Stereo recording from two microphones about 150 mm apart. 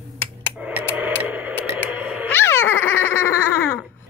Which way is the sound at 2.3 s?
15° left (ahead or behind).